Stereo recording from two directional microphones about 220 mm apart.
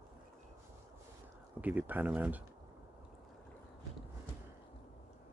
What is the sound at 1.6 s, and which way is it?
Speech, 5° right (ahead or behind).